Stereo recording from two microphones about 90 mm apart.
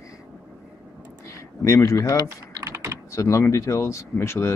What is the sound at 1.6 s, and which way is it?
Speech, 35° left (ahead or behind).